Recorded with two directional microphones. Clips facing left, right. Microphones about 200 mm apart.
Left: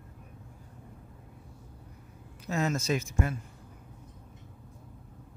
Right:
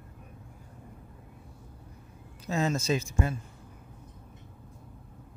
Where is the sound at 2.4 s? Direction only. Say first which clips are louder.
Right 1 dB; 30° right (ahead or behind).